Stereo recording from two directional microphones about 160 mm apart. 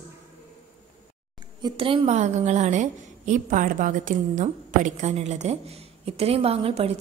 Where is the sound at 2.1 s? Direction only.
45° right (ahead or behind).